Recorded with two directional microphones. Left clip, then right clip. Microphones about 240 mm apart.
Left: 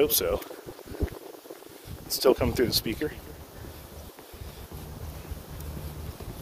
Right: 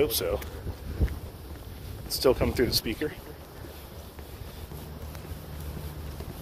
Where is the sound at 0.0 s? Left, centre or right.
Left.